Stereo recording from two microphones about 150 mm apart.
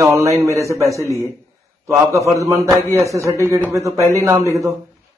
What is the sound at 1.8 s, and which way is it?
A man's voice, 20° right (ahead or behind).